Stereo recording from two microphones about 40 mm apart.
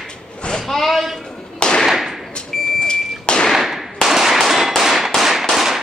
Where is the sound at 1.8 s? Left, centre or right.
Centre.